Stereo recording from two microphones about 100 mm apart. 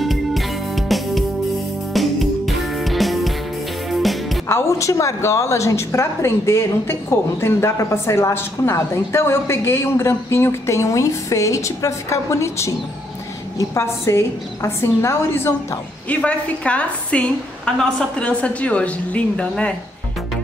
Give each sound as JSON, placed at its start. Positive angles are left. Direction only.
{"t": 0.0, "sound": "music", "side_deg": 0}
{"t": 4.5, "sound": "a woman's voice", "side_deg": 25}
{"t": 16.2, "sound": "a woman's voice", "side_deg": 10}